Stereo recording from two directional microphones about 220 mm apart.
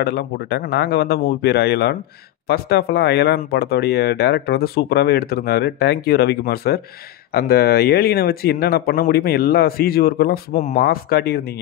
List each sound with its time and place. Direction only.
0.0 s speech: 45° left (ahead or behind)